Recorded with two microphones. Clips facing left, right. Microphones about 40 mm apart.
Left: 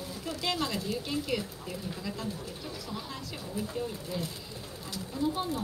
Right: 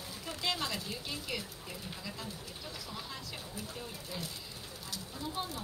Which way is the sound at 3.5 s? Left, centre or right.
Left.